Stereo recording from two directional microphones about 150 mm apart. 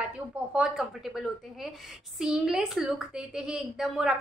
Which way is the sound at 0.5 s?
5° right (ahead or behind).